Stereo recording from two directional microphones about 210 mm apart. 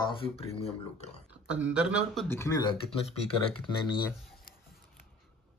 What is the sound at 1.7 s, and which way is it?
Speech, 5° right (ahead or behind).